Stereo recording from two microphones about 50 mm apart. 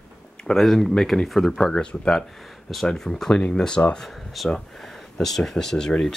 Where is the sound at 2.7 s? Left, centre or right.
Centre.